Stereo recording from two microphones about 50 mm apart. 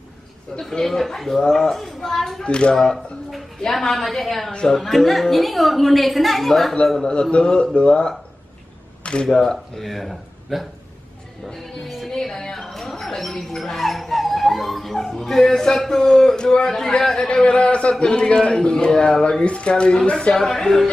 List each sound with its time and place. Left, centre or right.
0.6 s a woman's voice: centre
2.4 s speech: left
2.7 s a woman's voice: centre
4.5 s speech: centre
4.7 s a woman's voice: centre
7.0 s speech: centre
19.4 s speech: left
20.3 s speech: centre